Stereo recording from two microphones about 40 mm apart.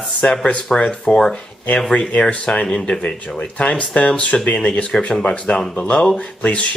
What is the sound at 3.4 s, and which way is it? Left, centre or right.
Speech, left.